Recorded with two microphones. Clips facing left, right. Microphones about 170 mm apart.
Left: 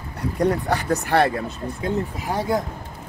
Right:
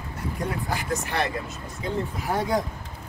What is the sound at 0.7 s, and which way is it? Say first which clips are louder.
Speech: left 6 dB; 65° left (ahead or behind).